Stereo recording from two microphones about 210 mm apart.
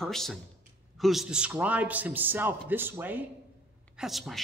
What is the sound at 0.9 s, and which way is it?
A man's voice, centre (ahead or behind).